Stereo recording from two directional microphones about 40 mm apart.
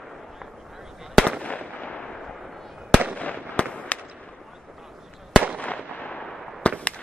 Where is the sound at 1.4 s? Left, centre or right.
Left.